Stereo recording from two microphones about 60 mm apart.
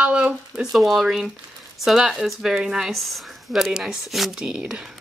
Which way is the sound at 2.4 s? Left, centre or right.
Centre.